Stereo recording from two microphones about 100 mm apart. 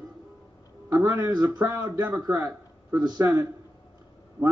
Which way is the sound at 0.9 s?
35° right (ahead or behind).